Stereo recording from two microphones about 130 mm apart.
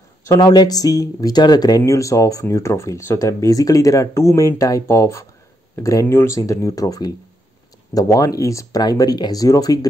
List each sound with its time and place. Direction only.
0.2 s speech: 25° left (ahead or behind)